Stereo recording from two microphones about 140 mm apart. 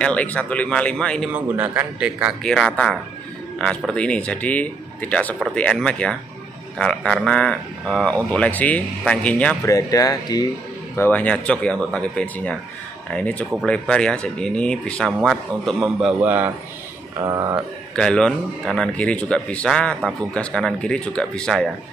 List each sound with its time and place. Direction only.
0.0 s a man's voice: 10° left (ahead or behind)
1.3 s a man's voice: 10° right (ahead or behind)
2.4 s a man's voice: 5° left (ahead or behind)
9.7 s speech: 25° left (ahead or behind)
11.0 s a man's voice: 10° left (ahead or behind)
15.8 s a man's voice: 5° right (ahead or behind)
17.2 s speech: 25° right (ahead or behind)
17.9 s a man's voice: 5° left (ahead or behind)